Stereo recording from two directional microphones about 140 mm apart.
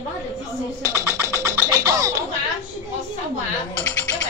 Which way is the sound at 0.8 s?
20° right (ahead or behind).